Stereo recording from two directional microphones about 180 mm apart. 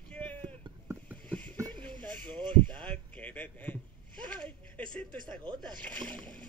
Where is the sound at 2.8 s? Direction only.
10° left (ahead or behind).